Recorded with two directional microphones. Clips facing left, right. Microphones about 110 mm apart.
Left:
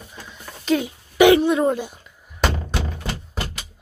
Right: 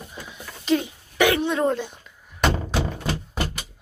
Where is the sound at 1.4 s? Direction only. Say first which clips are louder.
Left 3 dB; 5° left (ahead or behind).